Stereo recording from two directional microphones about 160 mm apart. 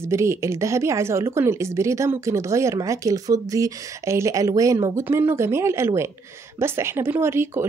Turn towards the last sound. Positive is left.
turn(degrees=-15)  # may be behind; listen again after turning